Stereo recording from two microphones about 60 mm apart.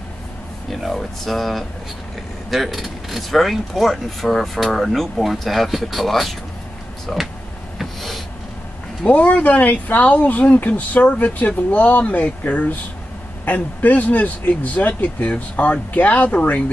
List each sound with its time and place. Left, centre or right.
0.7 s speech: centre
7.8 s a sound: centre
9.0 s speech: left